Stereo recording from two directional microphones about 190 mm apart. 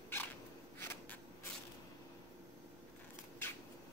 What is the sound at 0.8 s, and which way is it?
Insect, 10° left (ahead or behind).